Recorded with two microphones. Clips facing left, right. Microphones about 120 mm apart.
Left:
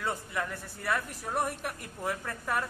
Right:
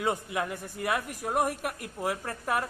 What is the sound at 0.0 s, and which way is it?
Speech, 15° right (ahead or behind).